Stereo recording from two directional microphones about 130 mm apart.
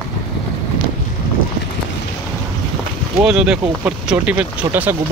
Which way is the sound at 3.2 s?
5° right (ahead or behind).